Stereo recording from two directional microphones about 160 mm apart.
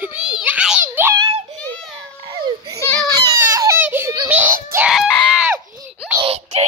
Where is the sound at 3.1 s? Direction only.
20° right (ahead or behind).